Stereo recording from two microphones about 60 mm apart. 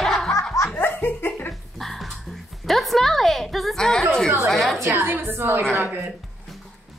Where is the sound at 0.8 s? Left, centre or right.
Left.